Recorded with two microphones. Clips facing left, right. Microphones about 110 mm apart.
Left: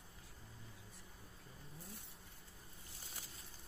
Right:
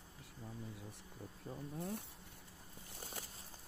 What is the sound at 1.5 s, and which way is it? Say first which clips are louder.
Bee: right 14 dB; 60° right (ahead or behind).